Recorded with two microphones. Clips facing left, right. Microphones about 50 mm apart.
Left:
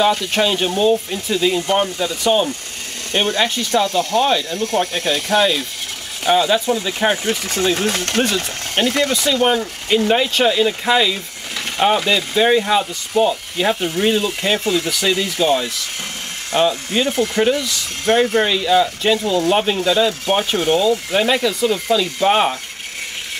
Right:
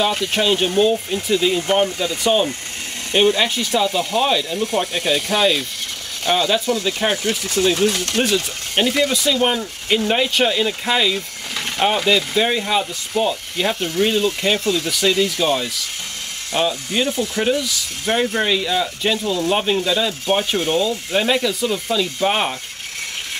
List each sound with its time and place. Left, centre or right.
0.0 s speech: centre
7.6 s speech: left
9.1 s speech: centre
14.6 s speech: centre
14.9 s speech: centre
18.7 s speech: centre